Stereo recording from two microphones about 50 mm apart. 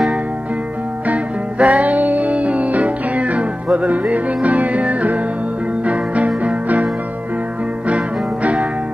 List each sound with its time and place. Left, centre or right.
1.0 s music: right